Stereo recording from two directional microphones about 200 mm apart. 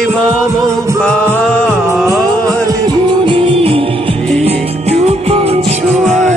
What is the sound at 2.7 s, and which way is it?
Music, 20° right (ahead or behind).